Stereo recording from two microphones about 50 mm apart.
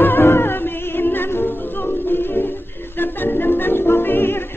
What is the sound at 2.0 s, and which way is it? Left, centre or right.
Music, left.